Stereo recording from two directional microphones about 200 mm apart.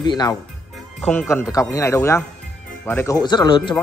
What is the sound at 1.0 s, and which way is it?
Speech, 5° left (ahead or behind).